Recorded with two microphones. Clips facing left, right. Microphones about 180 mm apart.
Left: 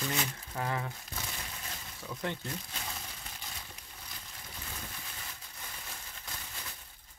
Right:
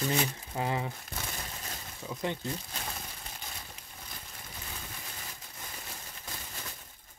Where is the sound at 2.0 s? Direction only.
15° right (ahead or behind).